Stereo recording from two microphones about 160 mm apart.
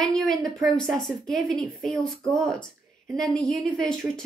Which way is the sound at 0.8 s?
Centre (ahead or behind).